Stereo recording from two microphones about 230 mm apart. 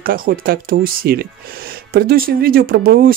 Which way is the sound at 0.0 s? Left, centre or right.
Right.